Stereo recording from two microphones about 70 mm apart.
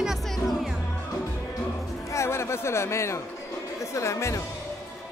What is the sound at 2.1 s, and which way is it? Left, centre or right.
Speech, left.